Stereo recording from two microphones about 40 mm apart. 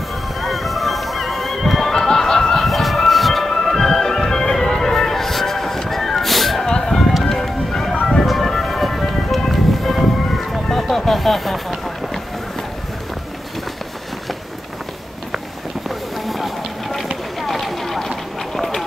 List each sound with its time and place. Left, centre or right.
0.4 s music: centre
6.7 s music: centre
9.5 s a sound: centre
16.3 s vehicle: centre
17.4 s run: centre